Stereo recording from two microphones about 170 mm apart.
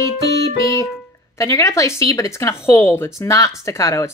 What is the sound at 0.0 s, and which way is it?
Music, 20° left (ahead or behind).